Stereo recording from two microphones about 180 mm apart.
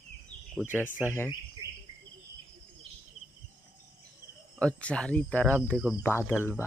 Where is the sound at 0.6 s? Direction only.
10° right (ahead or behind).